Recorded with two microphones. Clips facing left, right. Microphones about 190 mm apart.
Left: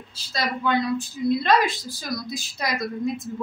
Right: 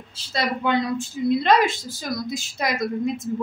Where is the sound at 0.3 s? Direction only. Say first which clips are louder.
Right 2 dB; 25° right (ahead or behind).